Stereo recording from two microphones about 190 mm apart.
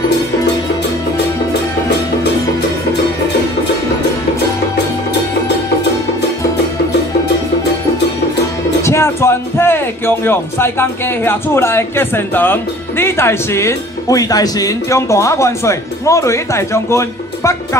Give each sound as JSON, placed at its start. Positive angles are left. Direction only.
{"t": 8.8, "sound": "speech", "side_deg": 15}